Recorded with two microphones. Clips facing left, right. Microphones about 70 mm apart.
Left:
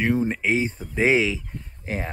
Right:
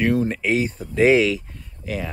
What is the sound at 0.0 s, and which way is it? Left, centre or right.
Speech, centre.